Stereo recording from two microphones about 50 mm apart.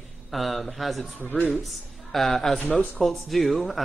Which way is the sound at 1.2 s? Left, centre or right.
Left.